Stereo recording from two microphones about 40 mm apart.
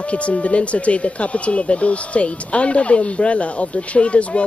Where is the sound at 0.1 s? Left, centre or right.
Left.